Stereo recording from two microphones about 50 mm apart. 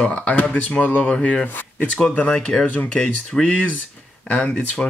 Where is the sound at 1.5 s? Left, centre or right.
Left.